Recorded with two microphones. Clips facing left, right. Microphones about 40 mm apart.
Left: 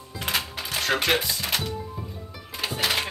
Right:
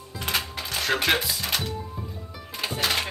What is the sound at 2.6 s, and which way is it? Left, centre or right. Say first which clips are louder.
Music: even; centre.